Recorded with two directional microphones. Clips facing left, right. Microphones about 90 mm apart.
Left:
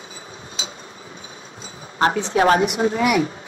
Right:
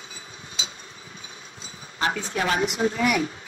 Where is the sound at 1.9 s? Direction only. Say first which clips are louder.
Left 7 dB; 40° left (ahead or behind).